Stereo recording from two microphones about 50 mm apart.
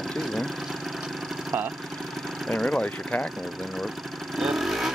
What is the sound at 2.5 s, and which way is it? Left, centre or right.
Speech, centre.